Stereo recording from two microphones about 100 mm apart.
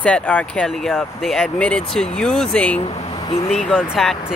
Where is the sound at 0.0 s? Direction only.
10° left (ahead or behind).